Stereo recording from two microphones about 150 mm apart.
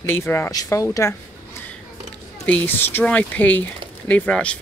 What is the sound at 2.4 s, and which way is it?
Speech, 10° left (ahead or behind).